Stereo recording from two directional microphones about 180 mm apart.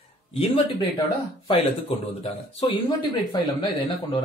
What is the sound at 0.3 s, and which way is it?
Speech, 35° left (ahead or behind).